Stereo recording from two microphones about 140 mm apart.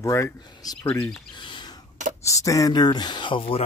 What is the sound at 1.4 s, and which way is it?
Bird, 35° left (ahead or behind).